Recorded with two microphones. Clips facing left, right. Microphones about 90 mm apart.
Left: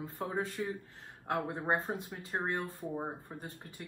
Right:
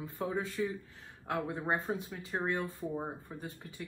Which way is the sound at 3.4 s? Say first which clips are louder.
Right 2 dB; 40° left (ahead or behind).